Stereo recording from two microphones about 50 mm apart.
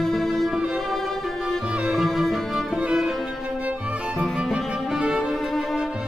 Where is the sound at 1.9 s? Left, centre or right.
Centre.